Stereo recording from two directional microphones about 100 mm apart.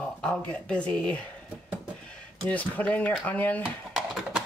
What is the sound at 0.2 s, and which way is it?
Speech, 10° left (ahead or behind).